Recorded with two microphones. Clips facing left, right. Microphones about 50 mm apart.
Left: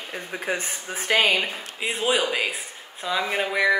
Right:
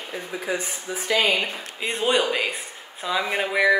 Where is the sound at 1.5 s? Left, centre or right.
Centre.